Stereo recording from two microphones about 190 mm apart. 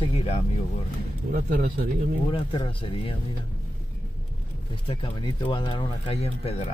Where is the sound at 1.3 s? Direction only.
50° right (ahead or behind).